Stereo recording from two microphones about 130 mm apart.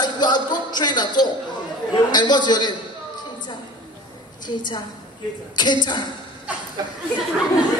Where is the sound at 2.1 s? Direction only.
35° left (ahead or behind).